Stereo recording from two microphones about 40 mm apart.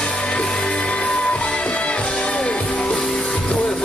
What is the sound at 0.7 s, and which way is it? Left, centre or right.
Music, left.